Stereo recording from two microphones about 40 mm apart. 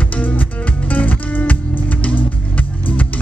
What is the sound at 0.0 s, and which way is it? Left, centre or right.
Music, left.